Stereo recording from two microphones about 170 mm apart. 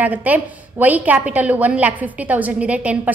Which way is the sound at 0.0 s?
10° right (ahead or behind).